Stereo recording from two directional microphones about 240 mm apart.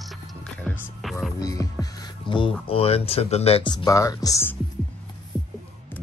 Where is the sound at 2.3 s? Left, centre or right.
Left.